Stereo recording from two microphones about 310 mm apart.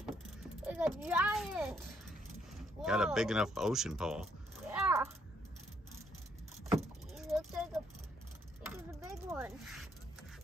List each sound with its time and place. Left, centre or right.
0.7 s a child's voice: centre
6.7 s vehicle: centre
8.7 s a sound: centre